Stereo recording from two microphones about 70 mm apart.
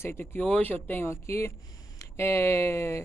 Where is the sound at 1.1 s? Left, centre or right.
Left.